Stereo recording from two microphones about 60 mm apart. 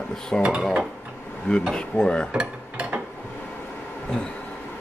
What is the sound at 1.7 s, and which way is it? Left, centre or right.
Speech, centre.